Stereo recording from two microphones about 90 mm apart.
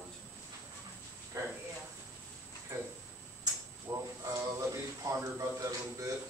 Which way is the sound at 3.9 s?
35° right (ahead or behind).